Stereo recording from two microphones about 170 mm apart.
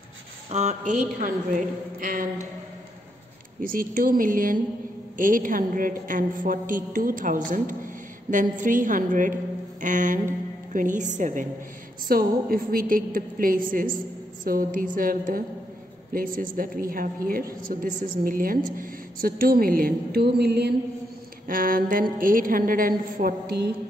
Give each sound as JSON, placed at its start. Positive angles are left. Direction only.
{"t": 0.5, "sound": "a woman's voice", "side_deg": -45}
{"t": 3.6, "sound": "a woman's voice", "side_deg": -55}
{"t": 12.1, "sound": "a woman's voice", "side_deg": -60}
{"t": 21.5, "sound": "a woman's voice", "side_deg": -55}